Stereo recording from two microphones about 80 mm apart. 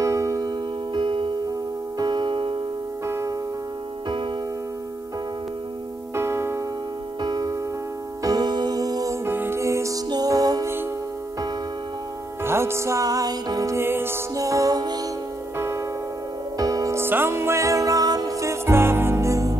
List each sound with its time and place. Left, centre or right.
0.0 s music: right
0.4 s music: right
2.0 s music: right
6.1 s music: right
7.2 s music: right
9.1 s music: right
10.0 s music: right
12.4 s music: right
13.7 s music: right
14.3 s music: right
15.5 s music: right
16.5 s music: right
16.9 s music: right